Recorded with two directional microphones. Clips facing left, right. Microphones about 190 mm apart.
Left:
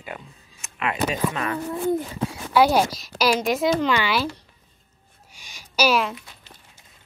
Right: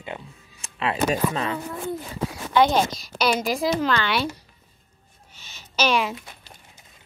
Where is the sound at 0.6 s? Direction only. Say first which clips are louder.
Right 1 dB; 30° right (ahead or behind).